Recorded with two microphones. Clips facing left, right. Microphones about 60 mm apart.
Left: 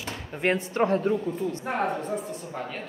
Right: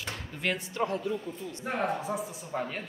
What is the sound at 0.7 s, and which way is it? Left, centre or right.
Speech, left.